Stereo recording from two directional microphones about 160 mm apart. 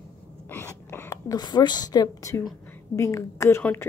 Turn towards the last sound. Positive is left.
turn(degrees=15)  # may be behind; listen again after turning